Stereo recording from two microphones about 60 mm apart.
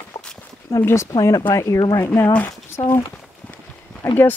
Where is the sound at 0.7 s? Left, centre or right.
Left.